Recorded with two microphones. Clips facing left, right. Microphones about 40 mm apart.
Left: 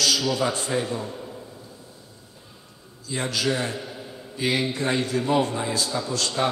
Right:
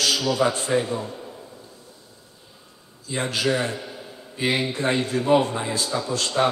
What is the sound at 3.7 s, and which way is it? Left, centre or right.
Speech, centre.